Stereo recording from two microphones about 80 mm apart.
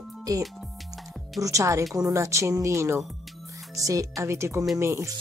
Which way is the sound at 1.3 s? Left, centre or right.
Right.